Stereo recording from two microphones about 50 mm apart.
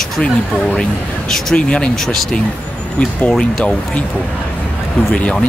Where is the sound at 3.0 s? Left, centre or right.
Centre.